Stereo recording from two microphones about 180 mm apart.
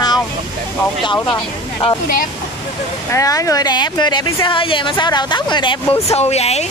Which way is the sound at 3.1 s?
20° left (ahead or behind).